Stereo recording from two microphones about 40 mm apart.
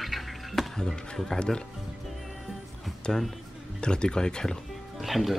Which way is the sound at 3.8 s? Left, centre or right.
Left.